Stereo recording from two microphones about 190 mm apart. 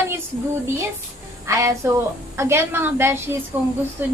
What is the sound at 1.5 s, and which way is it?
Speech, 15° right (ahead or behind).